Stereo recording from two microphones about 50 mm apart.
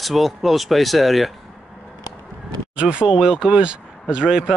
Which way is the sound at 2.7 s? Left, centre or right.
Right.